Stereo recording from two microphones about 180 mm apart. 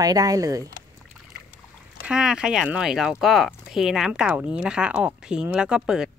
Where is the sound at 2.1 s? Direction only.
5° right (ahead or behind).